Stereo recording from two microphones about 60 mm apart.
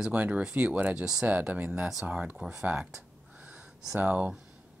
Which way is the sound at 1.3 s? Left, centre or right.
Right.